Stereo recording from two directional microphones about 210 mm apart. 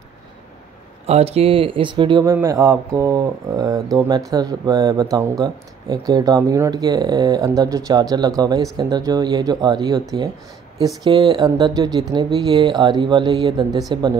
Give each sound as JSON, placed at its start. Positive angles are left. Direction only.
{"t": 1.0, "sound": "speech", "side_deg": -30}
{"t": 2.3, "sound": "speech", "side_deg": -10}
{"t": 11.1, "sound": "speech", "side_deg": -20}